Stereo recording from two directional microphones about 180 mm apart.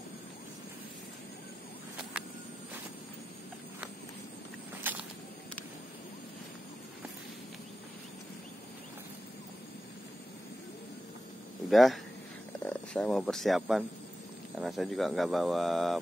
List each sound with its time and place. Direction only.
4.9 s walk: 10° right (ahead or behind)
11.7 s speech: centre (ahead or behind)